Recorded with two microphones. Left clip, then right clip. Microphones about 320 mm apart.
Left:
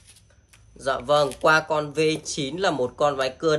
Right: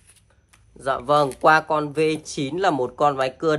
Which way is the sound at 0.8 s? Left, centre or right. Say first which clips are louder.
Right 1 dB; centre.